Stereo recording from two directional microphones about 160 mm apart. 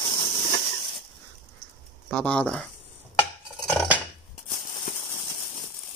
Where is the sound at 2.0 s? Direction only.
10° left (ahead or behind).